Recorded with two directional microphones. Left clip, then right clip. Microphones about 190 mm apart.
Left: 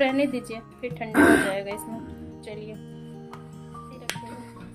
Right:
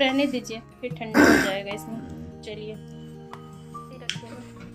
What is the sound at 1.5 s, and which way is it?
A woman's voice, 5° left (ahead or behind).